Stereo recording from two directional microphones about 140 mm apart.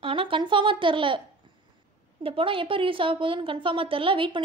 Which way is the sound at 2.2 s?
40° right (ahead or behind).